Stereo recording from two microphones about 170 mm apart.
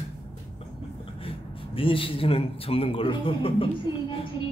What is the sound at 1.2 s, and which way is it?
A man's voice, 30° left (ahead or behind).